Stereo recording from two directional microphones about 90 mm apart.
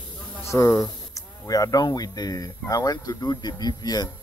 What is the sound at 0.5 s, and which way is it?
Speech, 35° left (ahead or behind).